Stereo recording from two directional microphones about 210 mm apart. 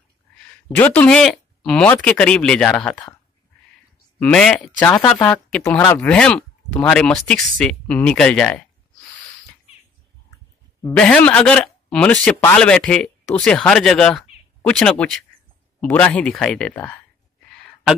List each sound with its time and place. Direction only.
0.7 s speech: 10° left (ahead or behind)
4.2 s speech: 5° left (ahead or behind)
10.8 s speech: 10° left (ahead or behind)